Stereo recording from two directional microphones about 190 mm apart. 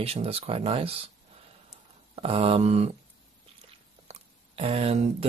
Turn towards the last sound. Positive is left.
turn(degrees=-35)  # may be behind; listen again after turning